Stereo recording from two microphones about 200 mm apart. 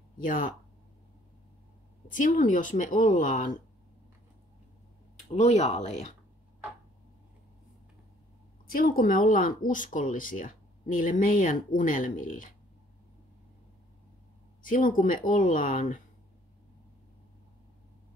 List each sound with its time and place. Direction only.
0.2 s speech: 40° left (ahead or behind)
2.0 s speech: 40° left (ahead or behind)
5.1 s speech: 35° left (ahead or behind)
8.7 s speech: 45° left (ahead or behind)
14.6 s speech: 45° left (ahead or behind)